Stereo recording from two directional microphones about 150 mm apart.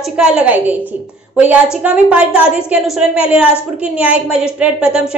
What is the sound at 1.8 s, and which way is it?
A woman's voice, 5° right (ahead or behind).